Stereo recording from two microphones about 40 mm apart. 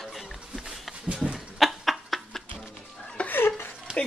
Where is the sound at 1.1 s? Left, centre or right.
Right.